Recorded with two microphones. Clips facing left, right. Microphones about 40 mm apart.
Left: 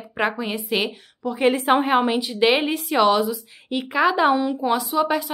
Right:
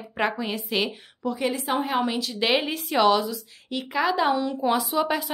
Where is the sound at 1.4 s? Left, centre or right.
Left.